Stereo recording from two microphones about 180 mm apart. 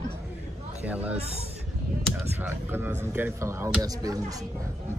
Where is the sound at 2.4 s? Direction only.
10° right (ahead or behind).